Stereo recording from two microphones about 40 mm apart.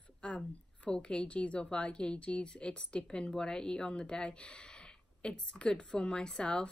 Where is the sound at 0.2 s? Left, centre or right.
Left.